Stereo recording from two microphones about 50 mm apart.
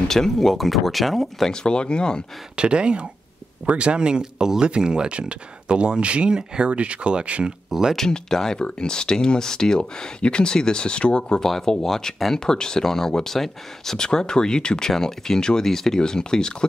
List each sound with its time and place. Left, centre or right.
0.1 s speech: centre
1.5 s speech: centre
2.5 s speech: centre
7.9 s speech: centre